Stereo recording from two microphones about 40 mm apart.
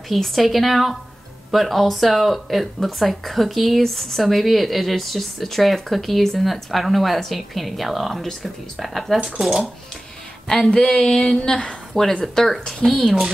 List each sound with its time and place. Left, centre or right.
0.1 s speech: centre
10.5 s speech: centre